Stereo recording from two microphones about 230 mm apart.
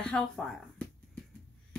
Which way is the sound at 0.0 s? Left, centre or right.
Centre.